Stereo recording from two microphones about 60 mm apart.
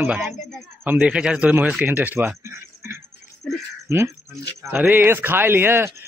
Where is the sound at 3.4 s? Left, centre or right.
Centre.